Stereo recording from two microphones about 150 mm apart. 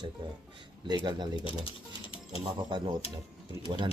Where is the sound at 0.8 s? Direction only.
30° right (ahead or behind).